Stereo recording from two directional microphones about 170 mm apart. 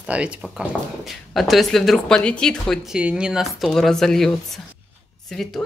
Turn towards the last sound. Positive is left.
turn(degrees=0)  # may be behind; listen again after turning